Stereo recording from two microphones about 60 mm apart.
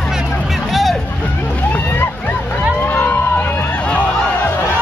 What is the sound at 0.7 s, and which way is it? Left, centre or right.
Boat, centre.